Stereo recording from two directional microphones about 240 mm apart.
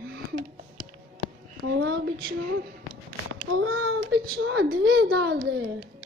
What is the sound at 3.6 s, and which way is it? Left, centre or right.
Speech, right.